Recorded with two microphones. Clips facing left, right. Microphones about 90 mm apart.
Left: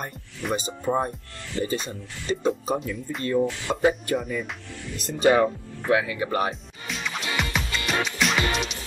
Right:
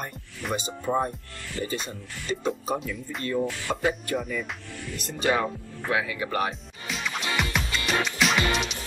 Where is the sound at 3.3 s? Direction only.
20° left (ahead or behind).